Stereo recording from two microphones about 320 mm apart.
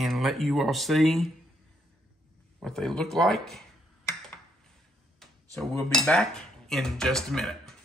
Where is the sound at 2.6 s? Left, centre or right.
Centre.